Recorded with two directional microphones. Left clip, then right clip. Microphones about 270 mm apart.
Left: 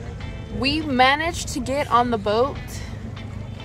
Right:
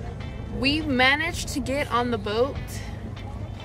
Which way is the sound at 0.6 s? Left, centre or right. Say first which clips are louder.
Left 3 dB; centre.